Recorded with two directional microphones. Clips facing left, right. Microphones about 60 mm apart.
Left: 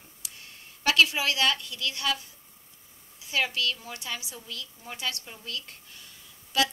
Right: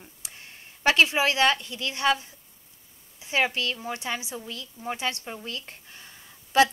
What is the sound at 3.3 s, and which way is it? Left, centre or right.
Speech, right.